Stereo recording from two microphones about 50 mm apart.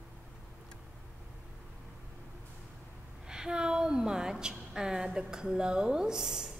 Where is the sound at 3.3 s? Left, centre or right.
Centre.